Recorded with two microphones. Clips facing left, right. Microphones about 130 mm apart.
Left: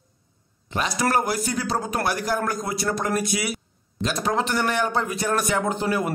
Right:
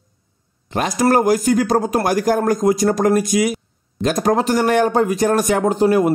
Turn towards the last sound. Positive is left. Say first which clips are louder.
# right 9 dB
turn(degrees=-40)  # may be behind; listen again after turning